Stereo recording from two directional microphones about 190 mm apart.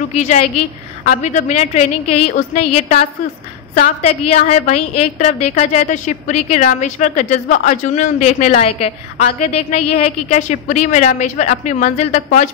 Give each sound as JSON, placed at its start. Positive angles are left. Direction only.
{"t": 0.1, "sound": "a woman's voice", "side_deg": 35}